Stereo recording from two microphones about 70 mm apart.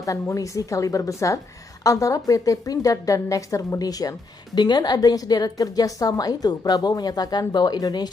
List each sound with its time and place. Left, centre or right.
0.0 s a woman's voice: left
4.6 s a woman's voice: left